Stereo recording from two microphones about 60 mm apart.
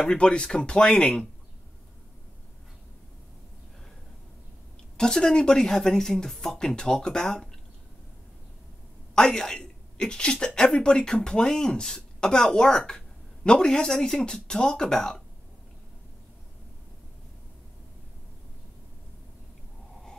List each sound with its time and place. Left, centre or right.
0.0 s speech: centre
4.9 s speech: centre
9.1 s a woman's voice: centre